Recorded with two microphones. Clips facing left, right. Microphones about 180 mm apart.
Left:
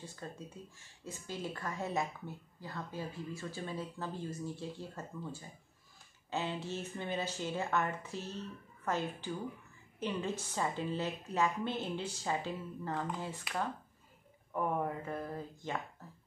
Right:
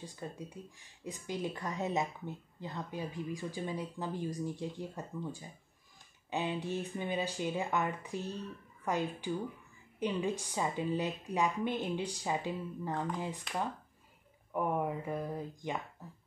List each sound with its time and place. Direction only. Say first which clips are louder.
0.0 s speech: right 3 dB; 15° right (ahead or behind)
14.5 s speech: right 2 dB; 10° right (ahead or behind)